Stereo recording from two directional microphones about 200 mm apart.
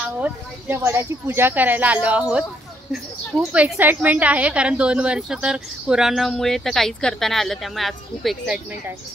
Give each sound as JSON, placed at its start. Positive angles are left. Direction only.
{"t": 0.2, "sound": "a woman's voice", "side_deg": -10}